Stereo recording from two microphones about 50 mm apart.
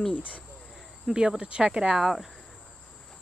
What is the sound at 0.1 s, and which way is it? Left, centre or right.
Speech, left.